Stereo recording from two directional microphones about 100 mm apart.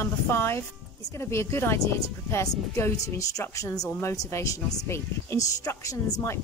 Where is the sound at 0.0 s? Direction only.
25° left (ahead or behind).